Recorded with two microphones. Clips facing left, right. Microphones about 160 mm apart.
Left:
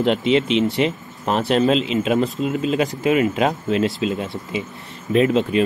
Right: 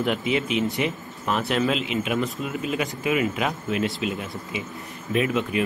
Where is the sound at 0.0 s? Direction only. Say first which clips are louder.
Left 6 dB; 25° left (ahead or behind).